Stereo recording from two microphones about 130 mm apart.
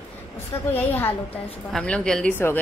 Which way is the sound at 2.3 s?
15° left (ahead or behind).